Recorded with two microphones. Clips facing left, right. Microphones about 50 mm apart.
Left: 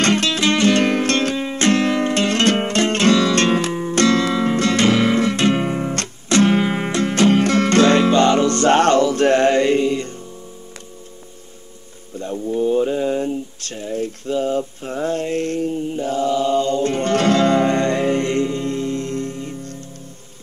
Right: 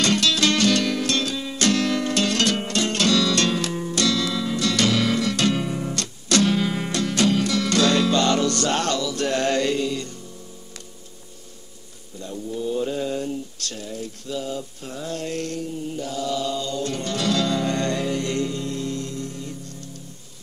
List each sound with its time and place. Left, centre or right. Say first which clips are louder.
0.0 s music: left 3 dB; left
12.2 s a sound: left 8 dB; left
17.1 s music: left 8 dB; left